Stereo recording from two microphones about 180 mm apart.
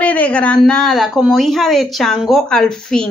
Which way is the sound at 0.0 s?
10° left (ahead or behind).